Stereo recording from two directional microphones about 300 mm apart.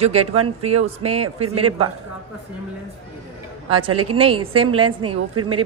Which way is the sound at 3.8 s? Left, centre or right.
Right.